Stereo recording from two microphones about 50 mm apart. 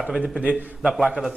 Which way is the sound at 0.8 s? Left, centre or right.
Centre.